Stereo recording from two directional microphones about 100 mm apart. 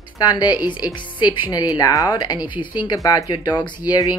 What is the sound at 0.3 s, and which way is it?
A woman's voice, 45° left (ahead or behind).